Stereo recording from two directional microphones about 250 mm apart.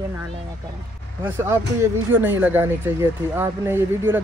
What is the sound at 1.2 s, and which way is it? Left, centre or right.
Speech, centre.